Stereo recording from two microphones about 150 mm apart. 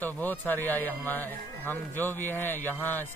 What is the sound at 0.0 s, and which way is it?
Speech, 10° left (ahead or behind).